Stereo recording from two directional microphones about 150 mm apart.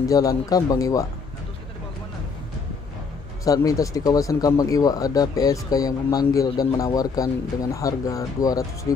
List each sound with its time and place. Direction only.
0.0 s speech: 25° left (ahead or behind)
3.4 s speech: 25° left (ahead or behind)